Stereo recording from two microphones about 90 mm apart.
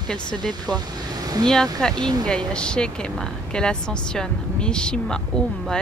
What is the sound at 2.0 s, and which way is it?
Speech, 50° right (ahead or behind).